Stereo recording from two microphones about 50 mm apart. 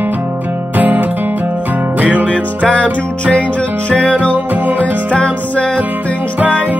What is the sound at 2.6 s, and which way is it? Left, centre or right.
Music, left.